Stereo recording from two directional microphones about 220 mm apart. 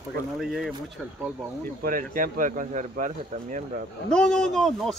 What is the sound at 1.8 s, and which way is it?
Speech, 40° right (ahead or behind).